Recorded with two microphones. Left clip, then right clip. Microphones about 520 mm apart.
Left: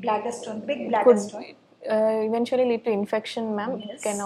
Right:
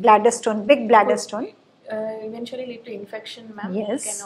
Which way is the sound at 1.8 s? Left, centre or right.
Left.